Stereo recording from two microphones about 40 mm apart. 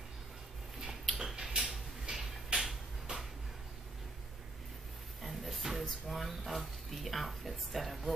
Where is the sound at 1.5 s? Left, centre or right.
Centre.